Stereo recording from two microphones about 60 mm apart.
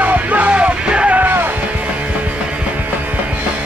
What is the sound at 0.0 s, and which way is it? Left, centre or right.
Music, right.